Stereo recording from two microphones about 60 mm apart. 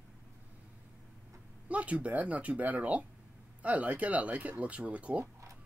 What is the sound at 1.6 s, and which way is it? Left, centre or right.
Speech, right.